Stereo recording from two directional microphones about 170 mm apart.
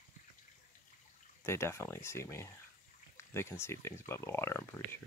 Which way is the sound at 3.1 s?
15° left (ahead or behind).